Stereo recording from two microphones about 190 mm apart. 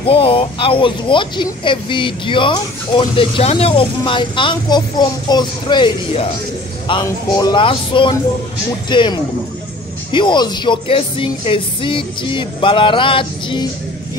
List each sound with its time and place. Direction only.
0.0 s speech: 30° left (ahead or behind)